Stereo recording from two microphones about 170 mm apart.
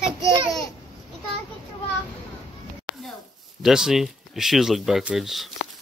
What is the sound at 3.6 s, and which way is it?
Speech, 5° right (ahead or behind).